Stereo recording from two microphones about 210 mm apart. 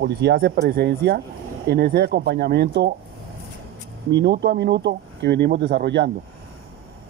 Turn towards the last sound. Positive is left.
turn(degrees=-55)  # may be behind; listen again after turning